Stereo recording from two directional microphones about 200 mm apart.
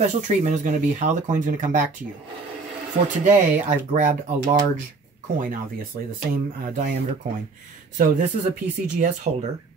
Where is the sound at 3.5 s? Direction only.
40° right (ahead or behind).